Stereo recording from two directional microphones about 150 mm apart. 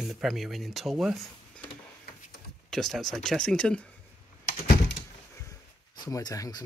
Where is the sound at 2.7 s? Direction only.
5° left (ahead or behind).